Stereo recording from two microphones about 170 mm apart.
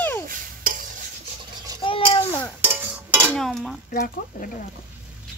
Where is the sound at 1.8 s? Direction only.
30° left (ahead or behind).